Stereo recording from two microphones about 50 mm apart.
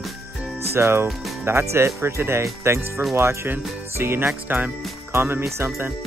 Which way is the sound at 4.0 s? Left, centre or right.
Right.